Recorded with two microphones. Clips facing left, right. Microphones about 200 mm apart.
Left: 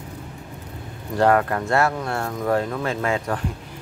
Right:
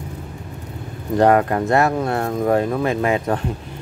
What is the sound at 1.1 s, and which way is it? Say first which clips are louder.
Speech: right 4 dB; 20° right (ahead or behind).